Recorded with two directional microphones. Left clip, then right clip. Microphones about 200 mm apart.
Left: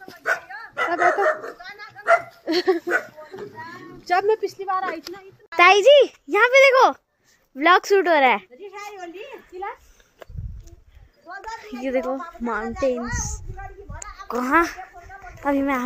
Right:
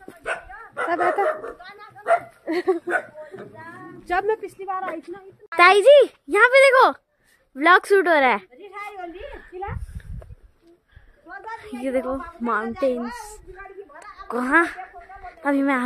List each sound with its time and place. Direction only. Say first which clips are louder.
0.2 s dog: left 5 dB; 5° left (ahead or behind)
1.6 s dog: left 3 dB; 15° right (ahead or behind)
2.4 s speech: left 2 dB; 40° left (ahead or behind)
4.1 s a woman's voice: left 3 dB; 50° left (ahead or behind)
5.5 s speech: even; 10° right (ahead or behind)
7.5 s a sound: right 1 dB; 5° right (ahead or behind)
11.2 s a child's voice: left 1 dB; centre (ahead or behind)
14.0 s a sound: even; centre (ahead or behind)